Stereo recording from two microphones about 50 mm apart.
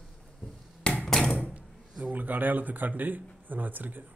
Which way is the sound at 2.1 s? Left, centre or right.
Right.